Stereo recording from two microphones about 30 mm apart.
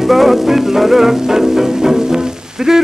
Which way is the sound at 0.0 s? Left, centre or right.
Centre.